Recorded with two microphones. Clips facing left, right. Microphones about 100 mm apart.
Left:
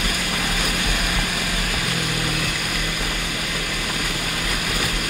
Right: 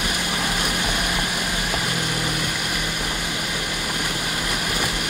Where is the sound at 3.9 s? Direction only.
15° right (ahead or behind).